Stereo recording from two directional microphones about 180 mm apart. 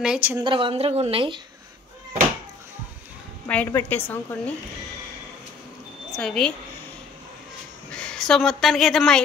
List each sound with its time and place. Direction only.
0.0 s speech: 5° right (ahead or behind)
0.4 s a woman's voice: 25° right (ahead or behind)
3.4 s a woman's voice: 10° left (ahead or behind)
6.1 s a woman's voice: centre (ahead or behind)
7.9 s a woman's voice: 5° left (ahead or behind)